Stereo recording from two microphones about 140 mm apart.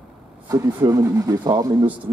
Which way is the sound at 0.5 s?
25° right (ahead or behind).